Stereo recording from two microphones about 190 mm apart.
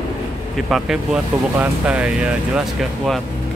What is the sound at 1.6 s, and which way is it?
Speech, 5° right (ahead or behind).